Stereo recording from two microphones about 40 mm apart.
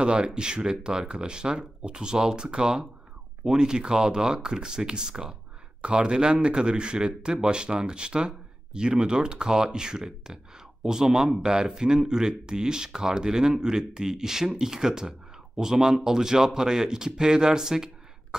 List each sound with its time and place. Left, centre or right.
0.0 s speech: right